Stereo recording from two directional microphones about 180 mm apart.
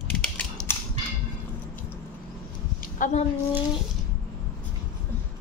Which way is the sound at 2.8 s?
45° left (ahead or behind).